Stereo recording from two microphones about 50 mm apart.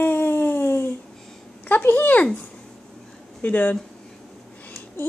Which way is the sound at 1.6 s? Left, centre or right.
Left.